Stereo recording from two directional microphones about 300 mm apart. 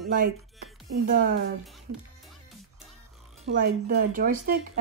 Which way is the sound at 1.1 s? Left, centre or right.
Right.